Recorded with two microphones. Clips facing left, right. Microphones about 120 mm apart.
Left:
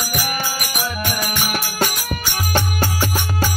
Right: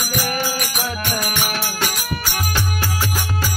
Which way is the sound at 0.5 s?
5° left (ahead or behind).